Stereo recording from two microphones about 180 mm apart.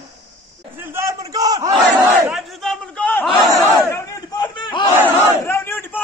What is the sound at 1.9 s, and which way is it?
Battle cry, centre (ahead or behind).